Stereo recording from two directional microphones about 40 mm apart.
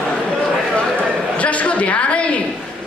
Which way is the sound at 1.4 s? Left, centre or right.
Left.